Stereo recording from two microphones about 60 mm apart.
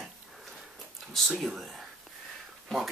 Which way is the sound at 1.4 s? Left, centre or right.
Centre.